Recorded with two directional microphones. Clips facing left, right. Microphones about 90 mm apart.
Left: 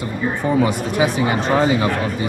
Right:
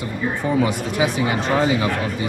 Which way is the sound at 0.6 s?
40° left (ahead or behind).